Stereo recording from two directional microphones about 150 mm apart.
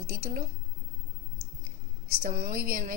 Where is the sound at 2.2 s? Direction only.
65° right (ahead or behind).